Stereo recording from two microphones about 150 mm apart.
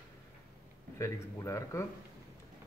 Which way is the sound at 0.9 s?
20° left (ahead or behind).